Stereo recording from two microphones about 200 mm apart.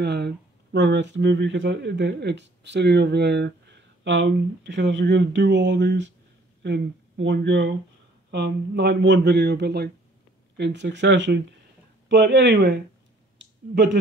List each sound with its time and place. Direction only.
0.0 s speech: 55° right (ahead or behind)